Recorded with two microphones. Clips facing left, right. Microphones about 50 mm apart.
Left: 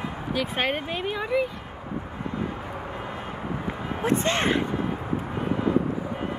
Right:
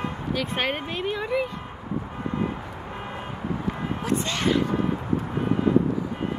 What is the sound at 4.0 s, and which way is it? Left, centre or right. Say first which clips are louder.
Speech: left 5 dB; left.